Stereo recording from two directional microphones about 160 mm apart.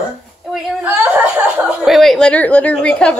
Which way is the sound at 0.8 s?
10° right (ahead or behind).